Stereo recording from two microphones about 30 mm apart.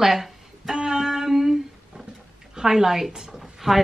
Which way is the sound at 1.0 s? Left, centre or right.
Centre.